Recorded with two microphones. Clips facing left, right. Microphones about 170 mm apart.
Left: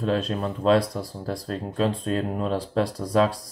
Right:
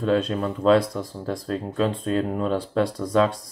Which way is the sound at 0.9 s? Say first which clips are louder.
Right 2 dB; 35° left (ahead or behind).